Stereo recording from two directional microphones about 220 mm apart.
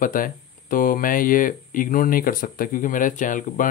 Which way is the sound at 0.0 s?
40° left (ahead or behind).